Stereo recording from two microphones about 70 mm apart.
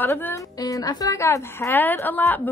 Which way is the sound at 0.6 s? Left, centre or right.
Left.